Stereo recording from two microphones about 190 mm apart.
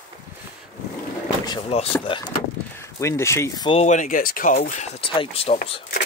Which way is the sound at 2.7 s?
15° left (ahead or behind).